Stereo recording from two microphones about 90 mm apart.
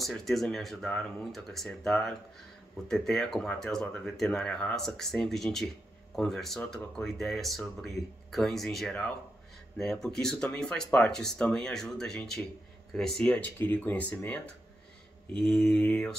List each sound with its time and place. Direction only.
0.0 s speech: centre (ahead or behind)
13.6 s speech: 20° left (ahead or behind)